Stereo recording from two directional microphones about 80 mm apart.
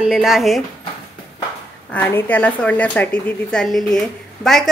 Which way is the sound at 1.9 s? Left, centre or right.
Left.